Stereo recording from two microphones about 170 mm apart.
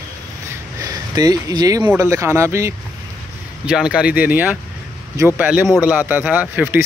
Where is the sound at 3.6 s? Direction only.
5° right (ahead or behind).